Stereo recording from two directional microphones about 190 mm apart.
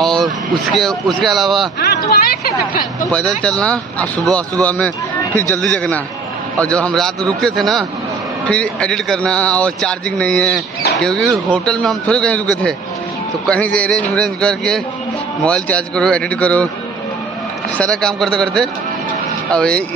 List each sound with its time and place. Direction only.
0.0 s speech: centre (ahead or behind)
1.8 s speech: 55° left (ahead or behind)
3.1 s speech: 5° left (ahead or behind)
13.7 s speech: 5° left (ahead or behind)
17.7 s speech: 5° left (ahead or behind)